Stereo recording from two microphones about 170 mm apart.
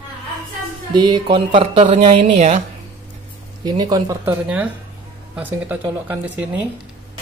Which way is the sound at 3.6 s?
25° right (ahead or behind).